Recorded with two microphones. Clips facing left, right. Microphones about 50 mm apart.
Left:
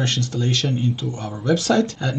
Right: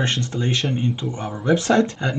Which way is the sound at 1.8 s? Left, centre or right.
Right.